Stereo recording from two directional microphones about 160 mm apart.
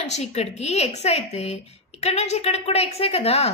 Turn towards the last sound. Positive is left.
turn(degrees=40)  # may be behind; listen again after turning